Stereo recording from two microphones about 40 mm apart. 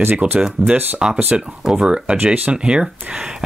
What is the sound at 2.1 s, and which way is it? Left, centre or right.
Speech, right.